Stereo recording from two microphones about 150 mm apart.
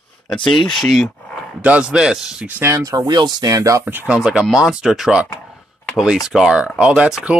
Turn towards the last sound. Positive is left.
turn(degrees=-5)  # may be behind; listen again after turning